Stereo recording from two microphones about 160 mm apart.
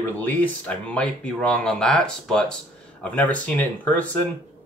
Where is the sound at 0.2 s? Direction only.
10° left (ahead or behind).